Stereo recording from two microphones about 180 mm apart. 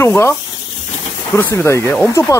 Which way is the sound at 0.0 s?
15° left (ahead or behind).